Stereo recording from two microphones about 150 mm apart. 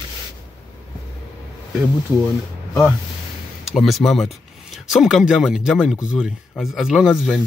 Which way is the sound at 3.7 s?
Centre (ahead or behind).